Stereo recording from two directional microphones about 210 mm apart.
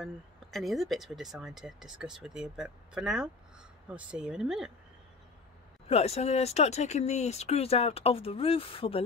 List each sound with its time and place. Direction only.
0.0 s speech: centre (ahead or behind)
5.9 s speech: 30° left (ahead or behind)